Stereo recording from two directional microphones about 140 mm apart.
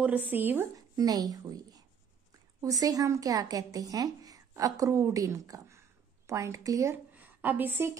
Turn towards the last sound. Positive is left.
turn(degrees=-15)  # may be behind; listen again after turning